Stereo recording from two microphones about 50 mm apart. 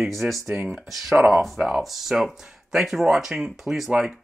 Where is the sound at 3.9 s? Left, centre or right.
Centre.